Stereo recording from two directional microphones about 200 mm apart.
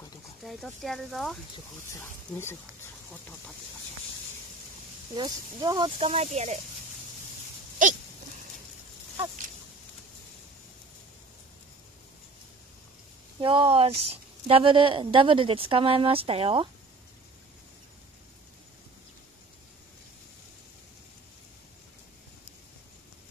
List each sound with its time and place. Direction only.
0.4 s speech: centre (ahead or behind)
1.9 s speech: 10° left (ahead or behind)
5.1 s speech: 20° right (ahead or behind)
7.8 s speech: 40° right (ahead or behind)
13.4 s speech: 25° right (ahead or behind)